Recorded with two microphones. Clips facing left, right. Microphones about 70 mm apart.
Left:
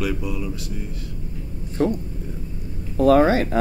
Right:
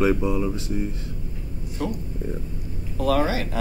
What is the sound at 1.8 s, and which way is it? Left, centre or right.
Speech, left.